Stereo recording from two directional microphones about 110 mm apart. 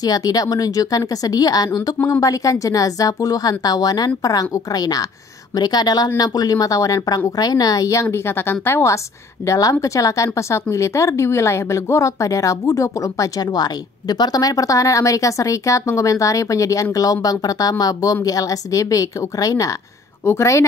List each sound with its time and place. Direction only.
0.0 s a woman's voice: 35° left (ahead or behind)